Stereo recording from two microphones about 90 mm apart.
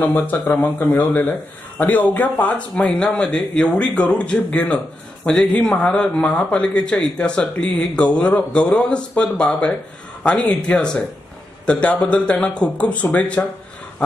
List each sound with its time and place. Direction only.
0.0 s speech: 20° left (ahead or behind)